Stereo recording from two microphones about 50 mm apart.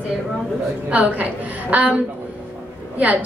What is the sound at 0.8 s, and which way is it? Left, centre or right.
A woman's voice, right.